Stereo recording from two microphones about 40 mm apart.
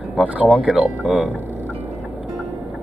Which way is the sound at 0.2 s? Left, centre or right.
Right.